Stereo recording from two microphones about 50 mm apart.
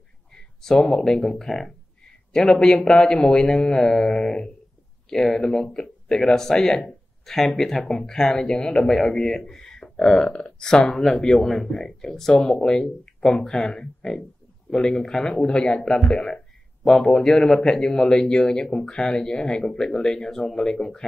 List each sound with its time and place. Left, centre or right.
0.3 s speech: centre